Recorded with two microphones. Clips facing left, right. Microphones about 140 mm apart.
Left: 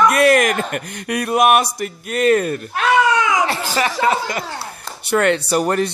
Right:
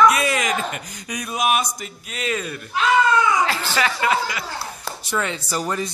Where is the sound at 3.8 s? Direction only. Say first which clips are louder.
Left 3 dB; 30° left (ahead or behind).